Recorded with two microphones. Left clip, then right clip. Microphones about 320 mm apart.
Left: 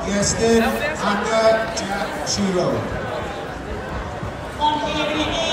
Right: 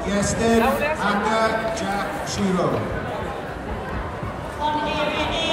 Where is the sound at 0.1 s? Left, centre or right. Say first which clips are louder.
Left 3 dB; centre.